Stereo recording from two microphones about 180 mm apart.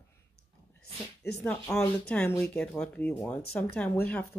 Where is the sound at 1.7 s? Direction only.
5° left (ahead or behind).